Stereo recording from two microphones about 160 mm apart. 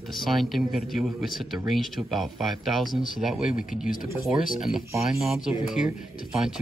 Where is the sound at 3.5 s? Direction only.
55° left (ahead or behind).